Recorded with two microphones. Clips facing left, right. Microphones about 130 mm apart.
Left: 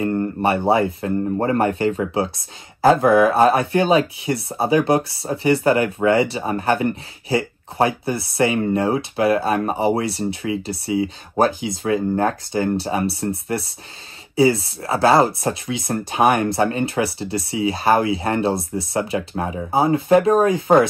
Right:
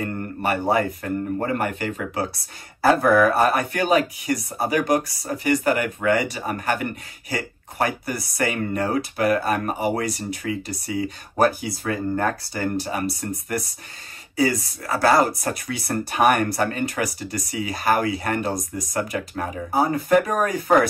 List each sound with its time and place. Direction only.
0.0 s speech: 25° left (ahead or behind)
2.3 s speech: 20° left (ahead or behind)